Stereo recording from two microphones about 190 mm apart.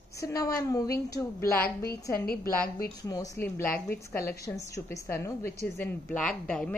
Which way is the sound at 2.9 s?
20° left (ahead or behind).